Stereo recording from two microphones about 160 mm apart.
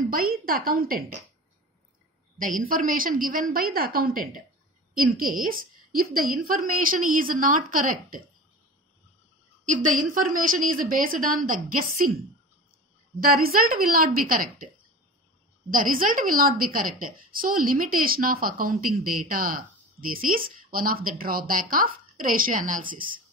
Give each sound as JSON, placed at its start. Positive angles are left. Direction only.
{"t": 0.1, "sound": "a woman's voice", "side_deg": -65}
{"t": 2.3, "sound": "a woman's voice", "side_deg": -55}
{"t": 9.7, "sound": "a woman's voice", "side_deg": -55}
{"t": 13.2, "sound": "a woman's voice", "side_deg": -65}
{"t": 15.7, "sound": "a woman's voice", "side_deg": -60}